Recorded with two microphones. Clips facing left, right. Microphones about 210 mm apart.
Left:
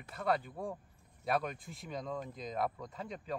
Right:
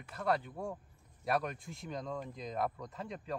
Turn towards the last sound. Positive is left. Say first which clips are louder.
# even
turn(degrees=0)  # may be behind; listen again after turning